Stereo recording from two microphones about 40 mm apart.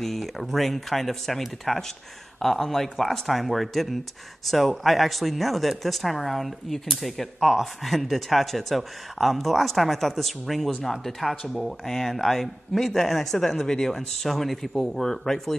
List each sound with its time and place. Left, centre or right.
0.0 s speech: centre